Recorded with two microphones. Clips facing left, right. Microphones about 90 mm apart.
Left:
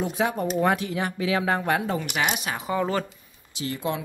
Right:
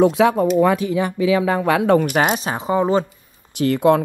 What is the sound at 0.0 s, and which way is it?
Speech, 90° right.